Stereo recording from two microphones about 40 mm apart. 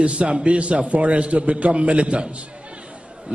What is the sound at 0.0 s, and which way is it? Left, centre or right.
A man's voice, right.